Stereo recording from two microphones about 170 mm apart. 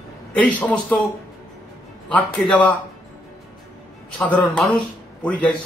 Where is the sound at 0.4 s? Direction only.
10° left (ahead or behind).